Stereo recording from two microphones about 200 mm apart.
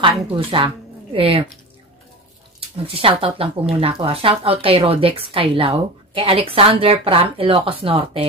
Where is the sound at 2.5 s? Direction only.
30° right (ahead or behind).